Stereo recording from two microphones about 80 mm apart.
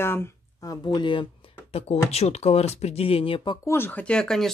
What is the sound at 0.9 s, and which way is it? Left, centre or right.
Speech, left.